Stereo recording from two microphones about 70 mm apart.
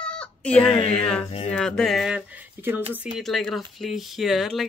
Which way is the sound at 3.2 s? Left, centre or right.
Centre.